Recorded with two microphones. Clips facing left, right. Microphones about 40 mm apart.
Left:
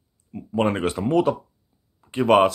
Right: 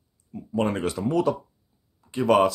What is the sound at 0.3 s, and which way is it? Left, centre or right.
Speech, left.